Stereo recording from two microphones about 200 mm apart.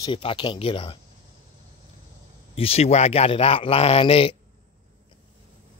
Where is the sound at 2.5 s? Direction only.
30° left (ahead or behind).